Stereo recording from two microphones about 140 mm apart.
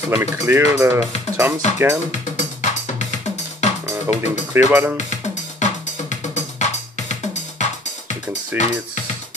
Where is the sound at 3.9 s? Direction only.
20° right (ahead or behind).